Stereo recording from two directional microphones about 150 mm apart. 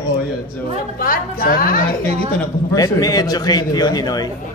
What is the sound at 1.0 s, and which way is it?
Speech, 75° left (ahead or behind).